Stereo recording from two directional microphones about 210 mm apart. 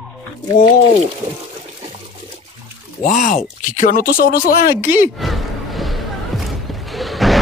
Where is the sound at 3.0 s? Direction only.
40° left (ahead or behind).